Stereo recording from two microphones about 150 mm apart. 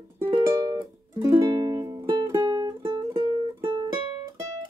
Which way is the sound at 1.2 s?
20° right (ahead or behind).